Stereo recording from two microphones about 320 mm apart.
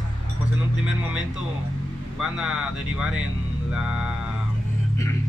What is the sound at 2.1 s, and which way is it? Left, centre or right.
Speech, centre.